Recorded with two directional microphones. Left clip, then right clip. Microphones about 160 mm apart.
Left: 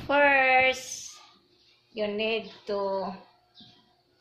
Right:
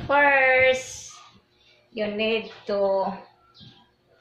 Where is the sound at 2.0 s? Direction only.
40° left (ahead or behind).